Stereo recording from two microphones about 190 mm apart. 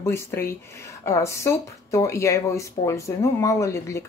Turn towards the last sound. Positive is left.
turn(degrees=15)  # may be behind; listen again after turning